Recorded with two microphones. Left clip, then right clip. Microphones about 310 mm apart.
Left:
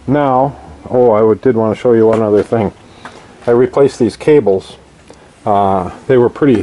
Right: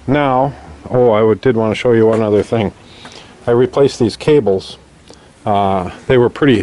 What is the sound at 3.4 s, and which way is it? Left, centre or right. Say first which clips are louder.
Speech: left 2 dB; centre.